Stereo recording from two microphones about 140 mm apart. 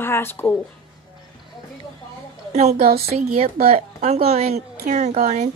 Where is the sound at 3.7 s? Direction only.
50° right (ahead or behind).